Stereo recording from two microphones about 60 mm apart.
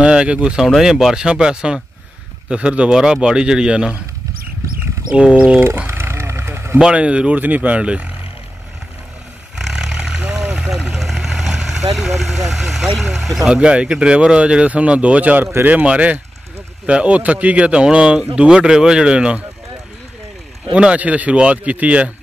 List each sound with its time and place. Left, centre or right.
0.0 s speech: centre
5.1 s speech: centre
5.9 s wild animals: right
6.8 s speech: centre
9.6 s vehicle: centre
11.9 s speech: centre
20.7 s speech: right